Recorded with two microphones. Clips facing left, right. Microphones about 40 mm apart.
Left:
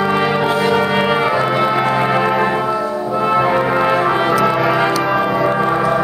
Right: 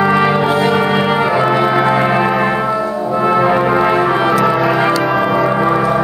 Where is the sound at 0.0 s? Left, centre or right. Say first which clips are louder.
Right 3 dB; centre.